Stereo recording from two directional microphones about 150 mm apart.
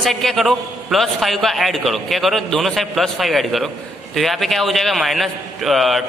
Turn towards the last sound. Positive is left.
turn(degrees=0)  # may be behind; listen again after turning